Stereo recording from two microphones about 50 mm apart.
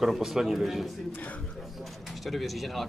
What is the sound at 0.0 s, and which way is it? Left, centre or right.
Speech, centre.